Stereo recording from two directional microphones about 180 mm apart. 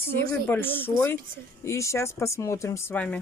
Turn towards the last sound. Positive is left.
turn(degrees=10)  # may be behind; listen again after turning